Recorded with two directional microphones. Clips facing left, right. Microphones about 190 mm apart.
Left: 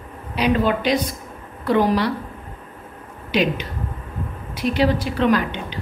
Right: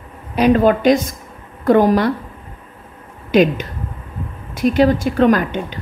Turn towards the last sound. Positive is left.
turn(degrees=-45)  # may be behind; listen again after turning